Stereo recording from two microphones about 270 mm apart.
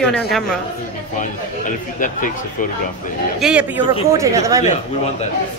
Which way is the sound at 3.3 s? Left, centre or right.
Centre.